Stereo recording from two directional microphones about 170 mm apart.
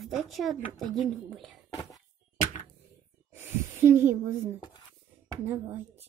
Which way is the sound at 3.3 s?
15° right (ahead or behind).